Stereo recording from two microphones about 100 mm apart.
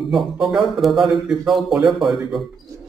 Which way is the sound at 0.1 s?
5° right (ahead or behind).